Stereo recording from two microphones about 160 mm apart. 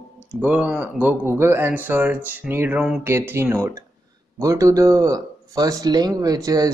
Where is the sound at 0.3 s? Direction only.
10° right (ahead or behind).